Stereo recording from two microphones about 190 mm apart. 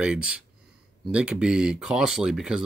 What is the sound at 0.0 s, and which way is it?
Speech, 5° right (ahead or behind).